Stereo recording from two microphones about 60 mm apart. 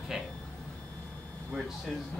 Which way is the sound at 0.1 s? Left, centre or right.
Centre.